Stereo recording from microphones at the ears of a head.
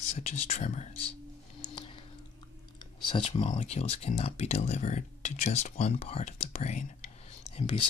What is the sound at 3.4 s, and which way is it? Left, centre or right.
Speech, left.